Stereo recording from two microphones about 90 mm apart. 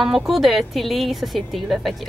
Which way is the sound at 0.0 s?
Centre (ahead or behind).